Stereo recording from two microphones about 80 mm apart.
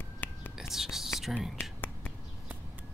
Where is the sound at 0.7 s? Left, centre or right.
Centre.